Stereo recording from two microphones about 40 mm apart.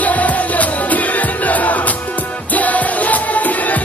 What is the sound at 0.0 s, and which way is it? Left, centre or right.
Music, left.